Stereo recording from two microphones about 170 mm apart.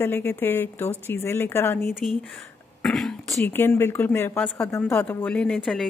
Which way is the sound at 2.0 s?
Centre (ahead or behind).